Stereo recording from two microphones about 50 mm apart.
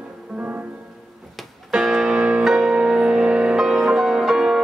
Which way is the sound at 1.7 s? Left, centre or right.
Centre.